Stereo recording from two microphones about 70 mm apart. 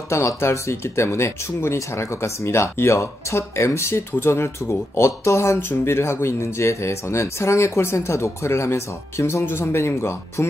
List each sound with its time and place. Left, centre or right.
0.1 s speech: left